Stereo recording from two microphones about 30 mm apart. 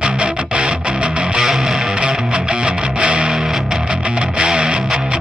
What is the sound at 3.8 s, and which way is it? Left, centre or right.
Music, right.